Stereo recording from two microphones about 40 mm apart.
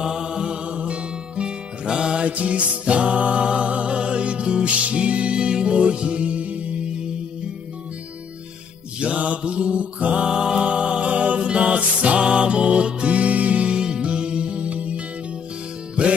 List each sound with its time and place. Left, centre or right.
0.0 s music: centre
2.2 s music: right
9.0 s mantra: right
10.2 s music: centre; by 13.7 s right
13.7 s music: right